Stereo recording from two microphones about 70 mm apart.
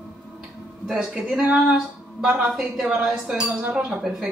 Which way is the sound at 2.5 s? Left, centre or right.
Centre.